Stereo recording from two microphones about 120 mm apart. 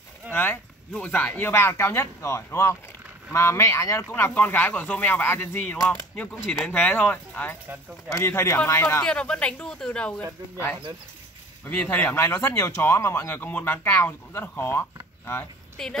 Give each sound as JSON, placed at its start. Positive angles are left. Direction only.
{"t": 0.3, "sound": "speech", "side_deg": 15}
{"t": 9.0, "sound": "speech", "side_deg": 10}
{"t": 11.6, "sound": "speech", "side_deg": 15}